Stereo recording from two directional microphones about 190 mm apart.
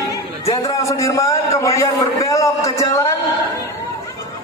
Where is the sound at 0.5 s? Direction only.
20° left (ahead or behind).